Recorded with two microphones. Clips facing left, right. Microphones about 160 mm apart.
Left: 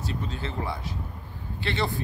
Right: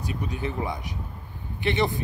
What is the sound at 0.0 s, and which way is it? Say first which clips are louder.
A man's voice: right 2 dB; 15° right (ahead or behind).